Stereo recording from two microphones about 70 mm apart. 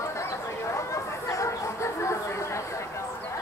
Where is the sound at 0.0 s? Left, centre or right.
Left.